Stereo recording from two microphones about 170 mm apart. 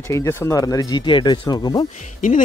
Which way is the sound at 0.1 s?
15° left (ahead or behind).